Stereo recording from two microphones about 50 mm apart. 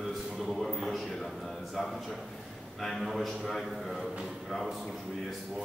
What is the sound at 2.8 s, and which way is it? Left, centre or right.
A man's voice, centre.